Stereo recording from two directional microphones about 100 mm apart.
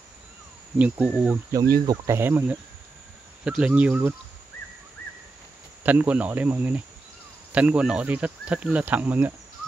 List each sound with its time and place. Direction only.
0.7 s speech: 15° right (ahead or behind)
1.5 s speech: 40° right (ahead or behind)
2.0 s insect: 25° right (ahead or behind)
3.4 s speech: 10° right (ahead or behind)
5.9 s speech: 15° right (ahead or behind)